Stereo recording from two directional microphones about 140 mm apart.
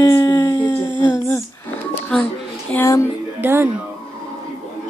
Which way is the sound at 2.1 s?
5° left (ahead or behind).